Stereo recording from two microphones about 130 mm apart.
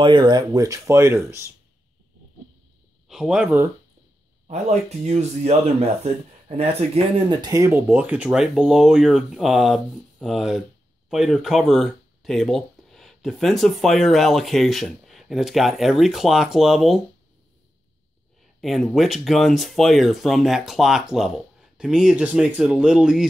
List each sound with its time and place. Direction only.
0.0 s speech: 35° right (ahead or behind)
3.1 s speech: 5° right (ahead or behind)
4.5 s speech: 60° right (ahead or behind)
7.2 s speech: 30° right (ahead or behind); by 17.0 s centre (ahead or behind)
18.6 s speech: centre (ahead or behind)